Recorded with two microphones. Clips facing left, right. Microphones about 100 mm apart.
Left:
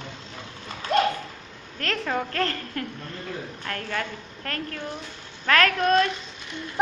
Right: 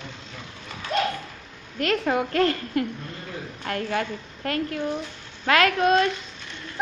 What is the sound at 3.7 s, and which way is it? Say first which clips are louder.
Speech: right 5 dB; 20° right (ahead or behind).